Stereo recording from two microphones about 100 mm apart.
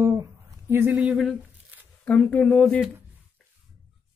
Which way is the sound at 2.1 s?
10° left (ahead or behind).